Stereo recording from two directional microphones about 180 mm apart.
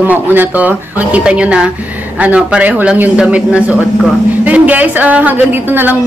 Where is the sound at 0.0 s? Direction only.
10° right (ahead or behind).